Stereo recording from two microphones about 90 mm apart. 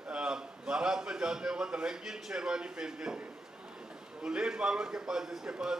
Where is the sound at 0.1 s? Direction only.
10° right (ahead or behind).